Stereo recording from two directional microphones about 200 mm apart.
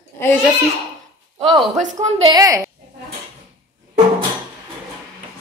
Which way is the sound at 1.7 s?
35° right (ahead or behind).